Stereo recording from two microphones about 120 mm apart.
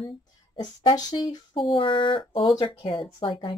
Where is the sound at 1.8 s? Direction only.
45° left (ahead or behind).